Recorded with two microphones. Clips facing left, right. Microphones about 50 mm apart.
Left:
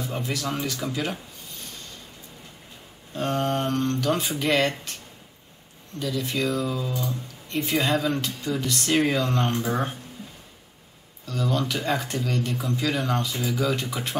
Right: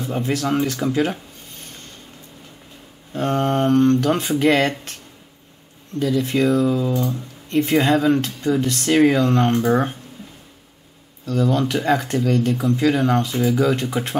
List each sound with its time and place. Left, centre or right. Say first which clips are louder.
0.0 s speech: right 7 dB; right
0.9 s a sound: right 8 dB; right
3.1 s speech: right 5 dB; right
5.9 s speech: right 8 dB; right
11.2 s speech: right 7 dB; right